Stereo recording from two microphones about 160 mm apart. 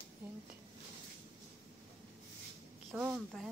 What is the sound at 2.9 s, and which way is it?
Speech, centre (ahead or behind).